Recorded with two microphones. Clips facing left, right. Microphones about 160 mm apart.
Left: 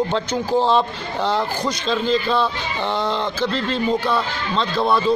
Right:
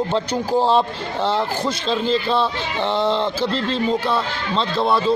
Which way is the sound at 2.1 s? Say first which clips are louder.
Even; 30° right (ahead or behind).